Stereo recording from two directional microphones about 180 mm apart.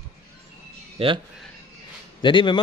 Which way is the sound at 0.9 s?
30° right (ahead or behind).